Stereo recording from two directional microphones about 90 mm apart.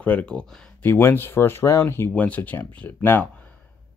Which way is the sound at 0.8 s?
25° left (ahead or behind).